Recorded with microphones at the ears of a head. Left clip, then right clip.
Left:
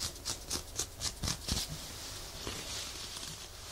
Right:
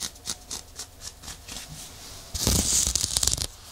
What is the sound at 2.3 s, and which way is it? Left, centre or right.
Tearing, right.